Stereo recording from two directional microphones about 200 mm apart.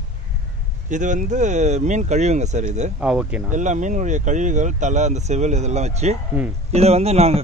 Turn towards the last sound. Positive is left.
turn(degrees=-30)  # may be behind; listen again after turning